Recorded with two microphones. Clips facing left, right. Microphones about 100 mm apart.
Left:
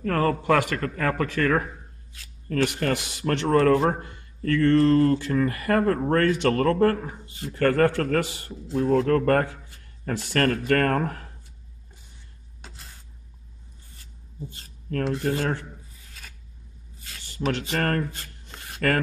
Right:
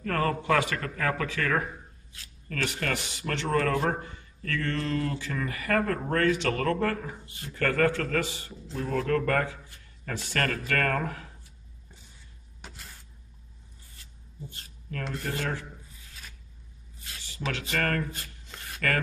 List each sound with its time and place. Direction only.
0.0 s speech: 35° left (ahead or behind)
3.1 s speech: 50° left (ahead or behind)
3.4 s speech: 35° left (ahead or behind)
4.0 s speech: 45° left (ahead or behind)
7.9 s speech: 50° left (ahead or behind)
8.7 s speech: 30° left (ahead or behind)
14.9 s speech: 45° left (ahead or behind)
17.3 s speech: 40° left (ahead or behind)